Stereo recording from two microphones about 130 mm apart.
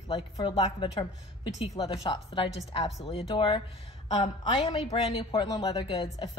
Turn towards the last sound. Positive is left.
turn(degrees=35)  # may be behind; listen again after turning